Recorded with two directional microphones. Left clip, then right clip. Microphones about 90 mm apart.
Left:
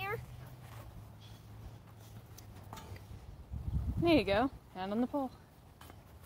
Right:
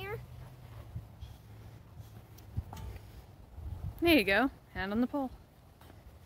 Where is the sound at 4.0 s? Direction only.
80° right.